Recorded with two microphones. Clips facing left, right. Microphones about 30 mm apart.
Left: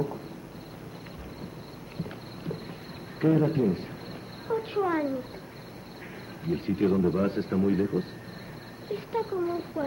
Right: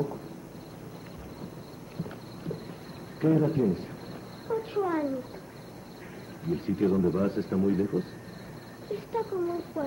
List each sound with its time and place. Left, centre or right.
2.0 s clip-clop: left
3.2 s a man's voice: left
6.4 s a man's voice: left